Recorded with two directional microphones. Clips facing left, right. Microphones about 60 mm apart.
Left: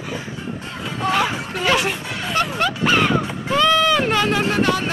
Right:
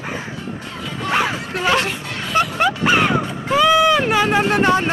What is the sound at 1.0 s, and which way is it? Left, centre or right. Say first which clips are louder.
Chatter: even; centre.